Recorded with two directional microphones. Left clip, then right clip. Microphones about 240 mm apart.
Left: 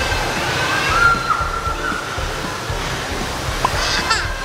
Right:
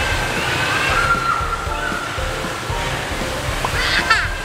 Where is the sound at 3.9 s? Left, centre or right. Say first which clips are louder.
Right 2 dB; left.